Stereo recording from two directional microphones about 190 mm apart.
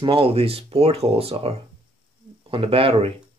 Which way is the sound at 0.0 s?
30° right (ahead or behind).